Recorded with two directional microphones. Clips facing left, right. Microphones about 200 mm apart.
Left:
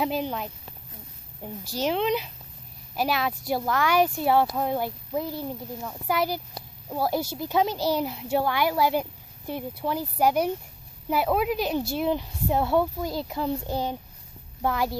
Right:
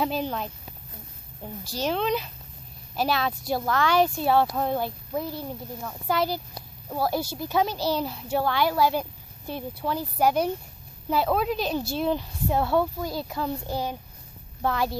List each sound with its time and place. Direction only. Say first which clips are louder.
0.0 s a woman's voice: even; 15° left (ahead or behind)